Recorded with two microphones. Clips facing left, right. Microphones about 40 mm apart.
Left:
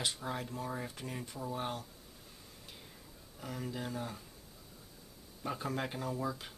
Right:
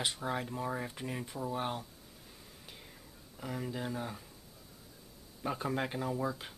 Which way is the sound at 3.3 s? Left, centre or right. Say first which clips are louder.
Right 2 dB; centre.